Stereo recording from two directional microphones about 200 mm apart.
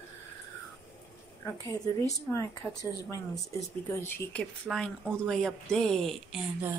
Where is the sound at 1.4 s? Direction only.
15° left (ahead or behind).